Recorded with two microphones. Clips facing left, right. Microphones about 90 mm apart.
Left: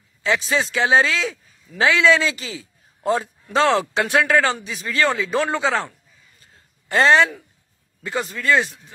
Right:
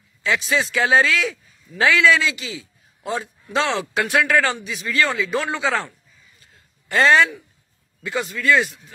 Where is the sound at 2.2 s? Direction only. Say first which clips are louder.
Left 1 dB; 40° left (ahead or behind).